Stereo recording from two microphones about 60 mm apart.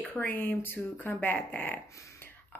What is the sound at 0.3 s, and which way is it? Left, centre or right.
A woman's voice, left.